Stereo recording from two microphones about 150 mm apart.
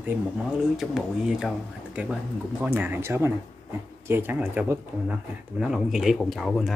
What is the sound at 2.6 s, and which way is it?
Speech, 15° right (ahead or behind).